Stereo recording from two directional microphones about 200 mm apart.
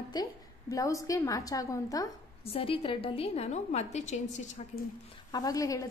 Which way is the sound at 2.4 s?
25° left (ahead or behind).